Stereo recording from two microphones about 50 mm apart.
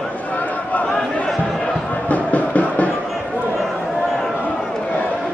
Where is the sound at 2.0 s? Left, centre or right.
Left.